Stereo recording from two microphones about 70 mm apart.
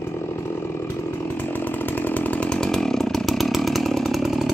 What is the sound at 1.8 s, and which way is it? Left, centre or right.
Chainsaw, left.